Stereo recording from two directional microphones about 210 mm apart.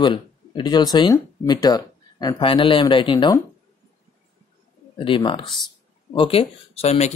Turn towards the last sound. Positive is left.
turn(degrees=30)  # may be behind; listen again after turning